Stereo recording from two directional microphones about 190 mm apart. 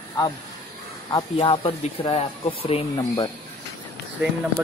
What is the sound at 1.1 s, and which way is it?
Speech, 25° left (ahead or behind).